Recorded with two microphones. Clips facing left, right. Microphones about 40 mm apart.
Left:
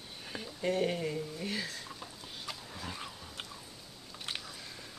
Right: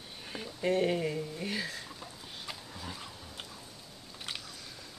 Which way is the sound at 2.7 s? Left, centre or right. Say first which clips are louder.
Left 1 dB; centre.